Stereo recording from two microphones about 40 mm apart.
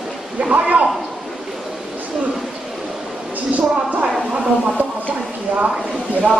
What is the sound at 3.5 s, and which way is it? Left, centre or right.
Speech, right.